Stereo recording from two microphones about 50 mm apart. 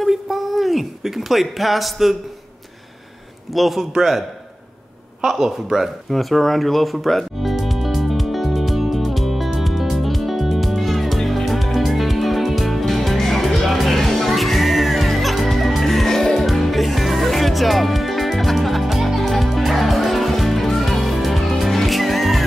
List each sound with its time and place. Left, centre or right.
0.0 s speech: centre
3.5 s a man's voice: centre
5.2 s a sound: centre